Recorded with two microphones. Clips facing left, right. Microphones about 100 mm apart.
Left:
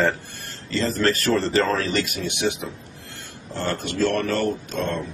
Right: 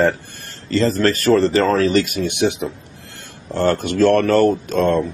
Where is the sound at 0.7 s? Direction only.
50° right (ahead or behind).